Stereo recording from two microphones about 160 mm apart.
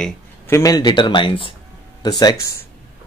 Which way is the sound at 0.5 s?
20° left (ahead or behind).